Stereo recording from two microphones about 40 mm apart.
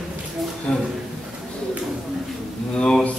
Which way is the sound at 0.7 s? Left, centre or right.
Centre.